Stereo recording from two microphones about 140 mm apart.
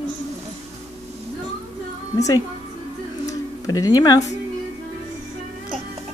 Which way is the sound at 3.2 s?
25° left (ahead or behind).